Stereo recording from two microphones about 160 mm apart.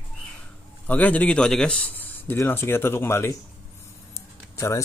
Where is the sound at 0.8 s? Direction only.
10° left (ahead or behind).